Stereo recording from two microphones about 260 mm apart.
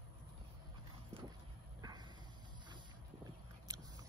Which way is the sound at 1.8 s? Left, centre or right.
Centre.